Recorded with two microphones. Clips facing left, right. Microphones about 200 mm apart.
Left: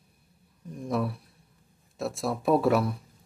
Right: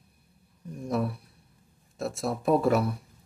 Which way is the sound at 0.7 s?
Centre (ahead or behind).